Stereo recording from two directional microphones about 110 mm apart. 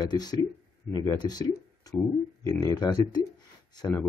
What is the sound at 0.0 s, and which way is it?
Speech, 40° left (ahead or behind).